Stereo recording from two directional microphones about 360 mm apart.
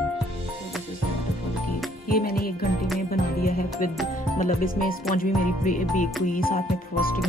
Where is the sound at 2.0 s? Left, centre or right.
Left.